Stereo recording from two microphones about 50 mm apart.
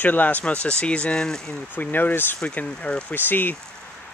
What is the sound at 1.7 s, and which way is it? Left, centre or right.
Speech, left.